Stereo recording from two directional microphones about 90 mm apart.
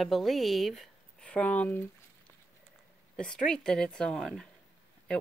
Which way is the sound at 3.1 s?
10° left (ahead or behind).